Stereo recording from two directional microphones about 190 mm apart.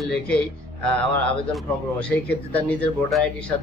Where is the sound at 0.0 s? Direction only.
5° left (ahead or behind).